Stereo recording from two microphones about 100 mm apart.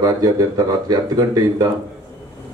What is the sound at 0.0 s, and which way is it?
Speech, 40° right (ahead or behind).